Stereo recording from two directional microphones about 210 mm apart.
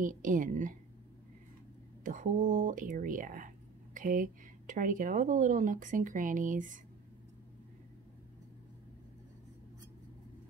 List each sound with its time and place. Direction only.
0.0 s speech: 40° right (ahead or behind)
2.0 s speech: 40° right (ahead or behind)